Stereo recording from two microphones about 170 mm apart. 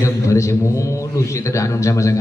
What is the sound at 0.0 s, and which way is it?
A man's voice, 15° left (ahead or behind).